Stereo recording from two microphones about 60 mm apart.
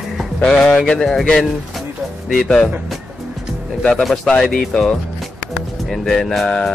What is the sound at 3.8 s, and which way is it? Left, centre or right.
Speech, centre.